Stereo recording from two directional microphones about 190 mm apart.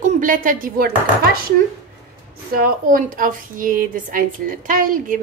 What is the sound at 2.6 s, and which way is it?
A woman's voice, 50° right (ahead or behind).